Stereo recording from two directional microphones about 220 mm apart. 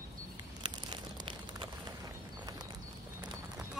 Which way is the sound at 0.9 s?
20° right (ahead or behind).